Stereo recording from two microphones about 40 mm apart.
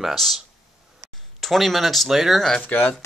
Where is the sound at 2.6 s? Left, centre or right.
Left.